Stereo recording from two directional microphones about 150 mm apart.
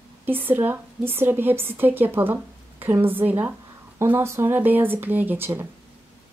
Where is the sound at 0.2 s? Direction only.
15° right (ahead or behind).